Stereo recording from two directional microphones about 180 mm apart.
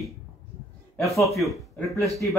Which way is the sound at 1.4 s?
Centre (ahead or behind).